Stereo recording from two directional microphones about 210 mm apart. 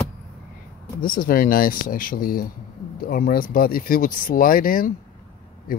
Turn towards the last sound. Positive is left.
turn(degrees=40)  # may be behind; listen again after turning